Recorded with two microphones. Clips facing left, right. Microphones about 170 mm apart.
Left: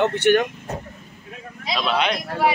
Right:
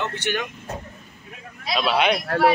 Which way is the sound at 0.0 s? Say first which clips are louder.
Left 9 dB; 60° left (ahead or behind).